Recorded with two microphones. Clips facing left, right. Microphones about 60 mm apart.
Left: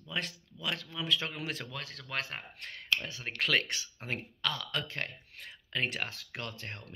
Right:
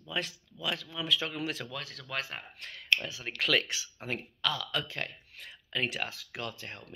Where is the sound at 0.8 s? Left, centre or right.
Left.